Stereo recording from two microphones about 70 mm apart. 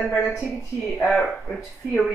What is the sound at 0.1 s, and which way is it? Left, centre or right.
A woman's voice, centre.